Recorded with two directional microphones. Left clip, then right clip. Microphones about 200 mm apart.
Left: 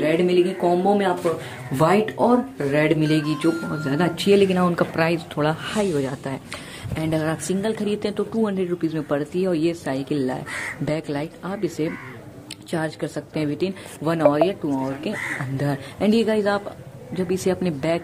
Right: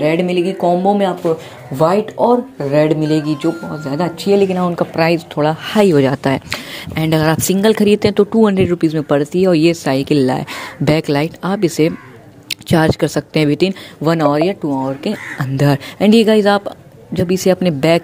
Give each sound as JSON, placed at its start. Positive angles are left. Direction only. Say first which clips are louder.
{"t": 0.0, "sound": "speech", "louder": "right 4 dB", "side_deg": -25}
{"t": 1.8, "sound": "speech", "louder": "right 5 dB", "side_deg": -5}
{"t": 4.9, "sound": "speech", "louder": "right 7 dB", "side_deg": -25}
{"t": 5.8, "sound": "speech", "louder": "right 12 dB", "side_deg": -40}